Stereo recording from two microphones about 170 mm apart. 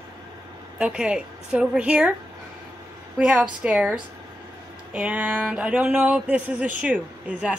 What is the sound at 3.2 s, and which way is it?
Speech, 10° right (ahead or behind).